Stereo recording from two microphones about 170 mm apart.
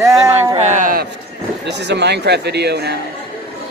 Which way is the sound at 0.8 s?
55° right (ahead or behind).